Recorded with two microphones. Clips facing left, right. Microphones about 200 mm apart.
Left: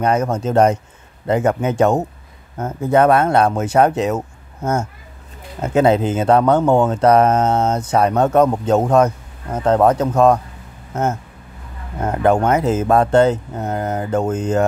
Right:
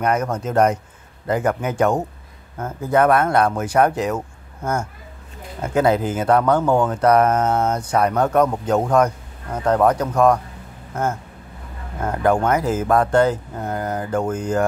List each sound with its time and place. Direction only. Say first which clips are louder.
0.0 s speech: left 3 dB; 25° left (ahead or behind)
5.6 s speech: left 3 dB; 20° left (ahead or behind)
12.0 s speech: left 3 dB; 20° left (ahead or behind)